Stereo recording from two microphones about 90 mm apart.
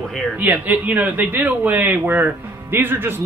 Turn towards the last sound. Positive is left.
turn(degrees=-25)  # may be behind; listen again after turning